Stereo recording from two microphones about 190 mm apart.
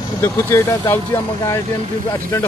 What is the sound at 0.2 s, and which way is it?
Speech, 15° left (ahead or behind).